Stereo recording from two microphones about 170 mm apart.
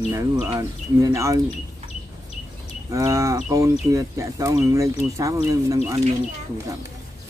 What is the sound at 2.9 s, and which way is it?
Speech, 20° right (ahead or behind).